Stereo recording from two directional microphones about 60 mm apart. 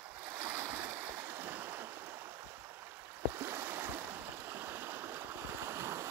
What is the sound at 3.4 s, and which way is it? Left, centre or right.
Stream, right.